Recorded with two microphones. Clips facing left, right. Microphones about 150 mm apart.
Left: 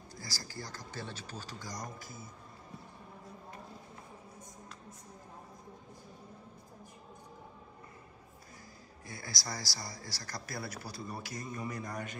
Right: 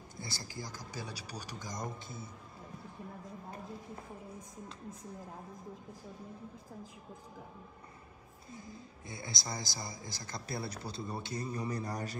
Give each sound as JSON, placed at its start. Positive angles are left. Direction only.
{"t": 0.2, "sound": "speech", "side_deg": -25}
{"t": 9.0, "sound": "speech", "side_deg": -20}